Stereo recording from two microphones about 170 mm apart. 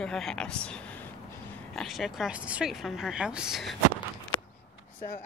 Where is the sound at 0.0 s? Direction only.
5° left (ahead or behind).